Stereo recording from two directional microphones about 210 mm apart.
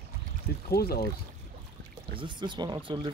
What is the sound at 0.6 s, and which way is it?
Speech, 50° left (ahead or behind).